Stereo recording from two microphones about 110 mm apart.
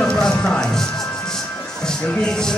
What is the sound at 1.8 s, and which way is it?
Speech, 5° left (ahead or behind).